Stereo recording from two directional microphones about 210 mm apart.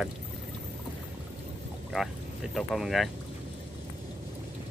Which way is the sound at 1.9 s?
Centre (ahead or behind).